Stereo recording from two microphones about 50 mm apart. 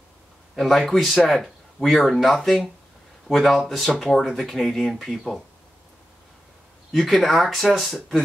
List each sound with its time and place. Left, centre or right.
0.6 s speech: centre
6.9 s speech: centre